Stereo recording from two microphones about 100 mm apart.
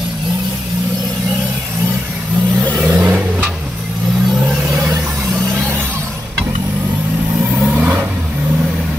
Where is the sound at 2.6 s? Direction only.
15° right (ahead or behind).